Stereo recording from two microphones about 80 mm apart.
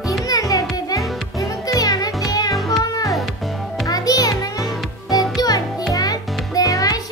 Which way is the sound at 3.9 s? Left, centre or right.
Left.